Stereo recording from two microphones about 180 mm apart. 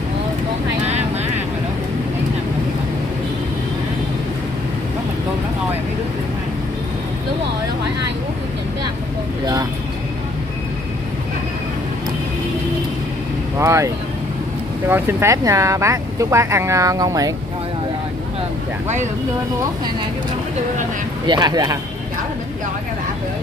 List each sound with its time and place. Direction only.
13.6 s speech: 15° right (ahead or behind)
21.3 s speech: 20° right (ahead or behind)